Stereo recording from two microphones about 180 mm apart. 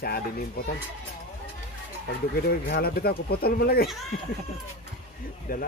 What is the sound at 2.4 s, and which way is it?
Speech, 60° left (ahead or behind).